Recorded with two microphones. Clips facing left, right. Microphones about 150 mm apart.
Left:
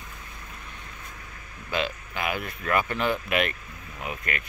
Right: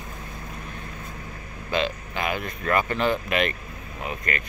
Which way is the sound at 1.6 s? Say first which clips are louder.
Right 3 dB; 5° left (ahead or behind).